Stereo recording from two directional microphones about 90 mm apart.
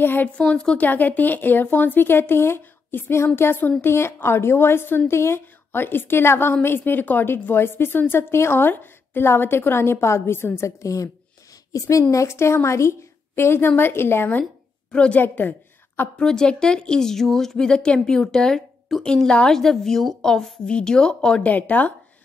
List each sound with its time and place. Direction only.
0.0 s a woman's voice: 25° left (ahead or behind)
0.4 s a woman's voice: 10° left (ahead or behind); by 11.1 s 35° left (ahead or behind)
12.1 s a woman's voice: 35° left (ahead or behind)
14.4 s a woman's voice: 10° left (ahead or behind)
16.2 s a woman's voice: 10° left (ahead or behind)